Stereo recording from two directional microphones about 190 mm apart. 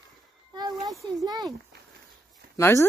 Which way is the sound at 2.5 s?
15° left (ahead or behind).